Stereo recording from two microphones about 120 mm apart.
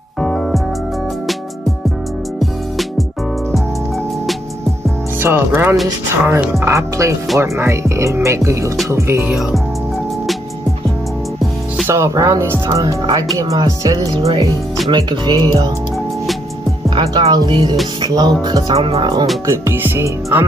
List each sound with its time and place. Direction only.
0.2 s music: centre (ahead or behind)
5.2 s speech: 20° right (ahead or behind)
11.9 s speech: 25° right (ahead or behind)
17.3 s speech: 35° right (ahead or behind)
18.7 s speech: 55° right (ahead or behind)
19.4 s speech: 25° right (ahead or behind)